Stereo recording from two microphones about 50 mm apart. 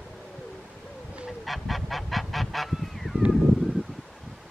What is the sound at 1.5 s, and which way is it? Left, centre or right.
Goose, centre.